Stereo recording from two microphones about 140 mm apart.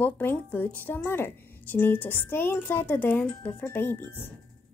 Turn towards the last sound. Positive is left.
turn(degrees=15)  # may be behind; listen again after turning